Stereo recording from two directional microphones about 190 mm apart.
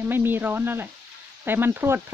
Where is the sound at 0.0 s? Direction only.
10° right (ahead or behind).